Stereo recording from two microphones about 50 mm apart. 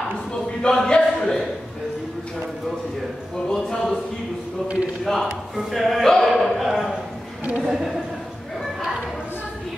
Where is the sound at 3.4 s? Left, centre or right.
Centre.